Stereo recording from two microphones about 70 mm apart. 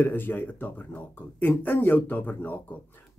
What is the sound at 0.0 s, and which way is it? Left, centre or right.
Speech, left.